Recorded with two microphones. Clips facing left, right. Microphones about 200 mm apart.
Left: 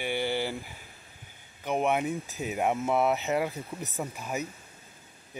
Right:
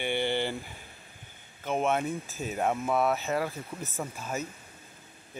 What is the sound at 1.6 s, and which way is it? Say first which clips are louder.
Speech: left 1 dB; 15° left (ahead or behind).